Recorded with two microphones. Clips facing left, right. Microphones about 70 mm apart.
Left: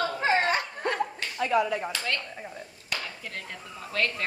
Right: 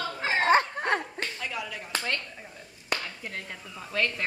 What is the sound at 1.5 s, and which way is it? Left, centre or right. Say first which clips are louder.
Speech: left 11 dB; left.